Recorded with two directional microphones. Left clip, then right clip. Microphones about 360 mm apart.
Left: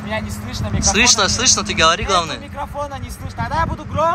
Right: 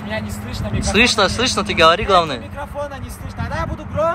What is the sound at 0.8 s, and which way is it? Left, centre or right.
Speech, centre.